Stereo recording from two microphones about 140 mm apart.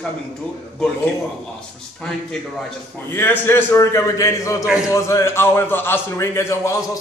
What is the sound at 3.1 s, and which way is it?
A man's voice, 15° left (ahead or behind).